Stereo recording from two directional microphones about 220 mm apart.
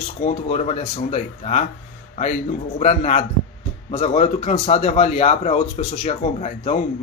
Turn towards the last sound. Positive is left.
turn(degrees=30)  # may be behind; listen again after turning